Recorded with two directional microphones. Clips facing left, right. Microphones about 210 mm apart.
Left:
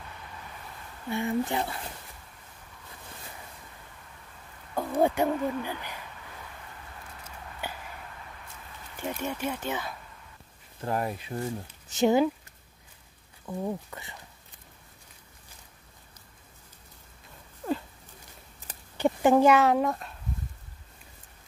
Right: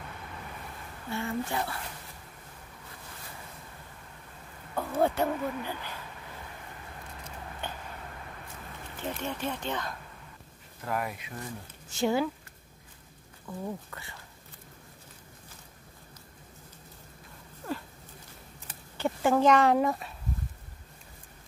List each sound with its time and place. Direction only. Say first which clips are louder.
1.1 s speech: left 4 dB; 15° left (ahead or behind)
4.7 s speech: left 2 dB; 15° left (ahead or behind)
7.6 s a sound: left 1 dB; 10° left (ahead or behind)
9.0 s speech: left 2 dB; 10° left (ahead or behind)
10.8 s speech: left 3 dB; 30° left (ahead or behind)
11.9 s speech: left 5 dB; 20° left (ahead or behind)
13.5 s speech: left 4 dB; 25° left (ahead or behind)
18.9 s speech: left 4 dB; 20° left (ahead or behind)
19.5 s speech: left 1 dB; centre (ahead or behind)